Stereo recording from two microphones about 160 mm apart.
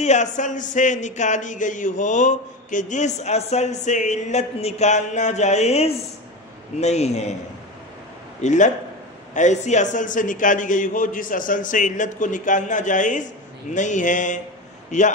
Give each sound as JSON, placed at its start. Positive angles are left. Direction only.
{"t": 0.0, "sound": "speech", "side_deg": 45}
{"t": 8.4, "sound": "a man's voice", "side_deg": 50}